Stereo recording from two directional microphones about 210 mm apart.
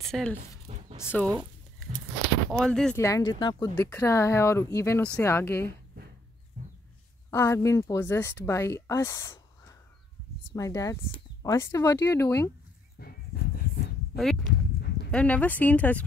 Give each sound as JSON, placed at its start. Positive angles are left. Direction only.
{"t": 0.0, "sound": "speech", "side_deg": 5}
{"t": 0.7, "sound": "a sound", "side_deg": -30}
{"t": 1.1, "sound": "speech", "side_deg": 5}
{"t": 2.5, "sound": "speech", "side_deg": 5}
{"t": 3.0, "sound": "speech", "side_deg": 15}
{"t": 6.5, "sound": "a sound", "side_deg": -40}
{"t": 7.2, "sound": "speech", "side_deg": 15}
{"t": 13.0, "sound": "dog", "side_deg": 50}
{"t": 14.1, "sound": "a sound", "side_deg": 0}
{"t": 15.0, "sound": "speech", "side_deg": 5}